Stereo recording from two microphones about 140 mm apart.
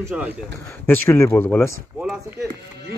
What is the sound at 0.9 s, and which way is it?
Speech, 20° left (ahead or behind).